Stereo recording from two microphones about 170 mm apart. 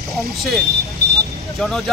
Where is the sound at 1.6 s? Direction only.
Centre (ahead or behind).